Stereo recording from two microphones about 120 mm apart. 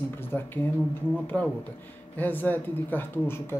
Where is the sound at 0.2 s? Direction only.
20° left (ahead or behind).